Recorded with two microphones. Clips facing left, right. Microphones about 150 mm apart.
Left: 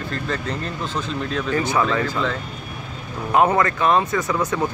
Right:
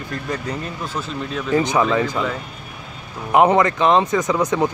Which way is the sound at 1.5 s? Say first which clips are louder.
Right 4 dB; 15° right (ahead or behind).